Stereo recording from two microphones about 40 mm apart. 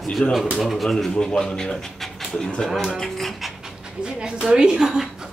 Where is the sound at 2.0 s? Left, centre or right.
Centre.